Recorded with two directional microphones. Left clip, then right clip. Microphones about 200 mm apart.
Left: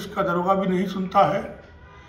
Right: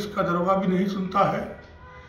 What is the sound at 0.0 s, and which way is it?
A man's voice, 10° left (ahead or behind).